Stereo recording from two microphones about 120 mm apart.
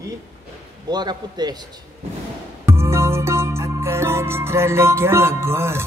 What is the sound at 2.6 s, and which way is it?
Music, 20° right (ahead or behind).